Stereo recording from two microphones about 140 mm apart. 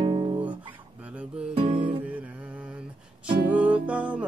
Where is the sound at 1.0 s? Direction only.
10° right (ahead or behind).